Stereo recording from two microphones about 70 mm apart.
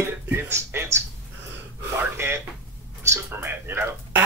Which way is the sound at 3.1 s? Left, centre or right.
Right.